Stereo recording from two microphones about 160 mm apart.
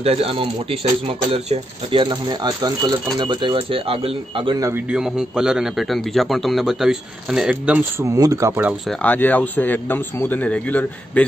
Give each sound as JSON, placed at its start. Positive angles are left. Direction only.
{"t": 0.0, "sound": "speech", "side_deg": -40}
{"t": 4.6, "sound": "speech", "side_deg": -10}
{"t": 8.0, "sound": "speech", "side_deg": -20}
{"t": 8.8, "sound": "speech", "side_deg": 10}